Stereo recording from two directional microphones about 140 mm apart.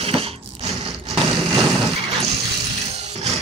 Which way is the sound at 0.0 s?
45° right (ahead or behind).